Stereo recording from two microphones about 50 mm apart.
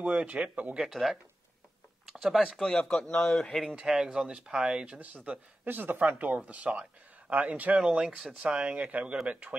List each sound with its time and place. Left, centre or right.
0.0 s speech: right
0.8 s speech: centre
2.6 s speech: centre
4.1 s speech: centre
4.9 s speech: right
5.7 s speech: right